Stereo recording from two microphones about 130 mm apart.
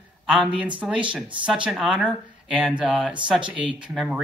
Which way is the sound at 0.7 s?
10° right (ahead or behind).